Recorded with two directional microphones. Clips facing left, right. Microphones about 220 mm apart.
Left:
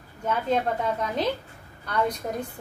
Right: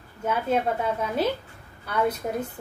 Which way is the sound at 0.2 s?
5° right (ahead or behind).